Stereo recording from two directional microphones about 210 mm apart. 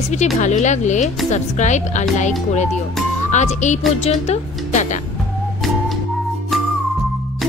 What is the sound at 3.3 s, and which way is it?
Speech, 35° left (ahead or behind).